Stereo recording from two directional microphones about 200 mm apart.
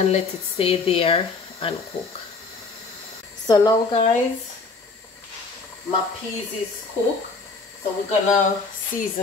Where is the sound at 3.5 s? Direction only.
20° left (ahead or behind).